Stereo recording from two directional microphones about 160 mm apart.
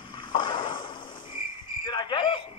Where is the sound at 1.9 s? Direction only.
30° left (ahead or behind).